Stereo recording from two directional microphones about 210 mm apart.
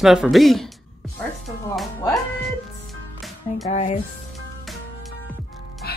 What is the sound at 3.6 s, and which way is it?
Speech, 35° left (ahead or behind).